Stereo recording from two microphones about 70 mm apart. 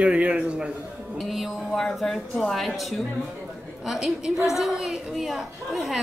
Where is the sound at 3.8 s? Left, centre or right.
Centre.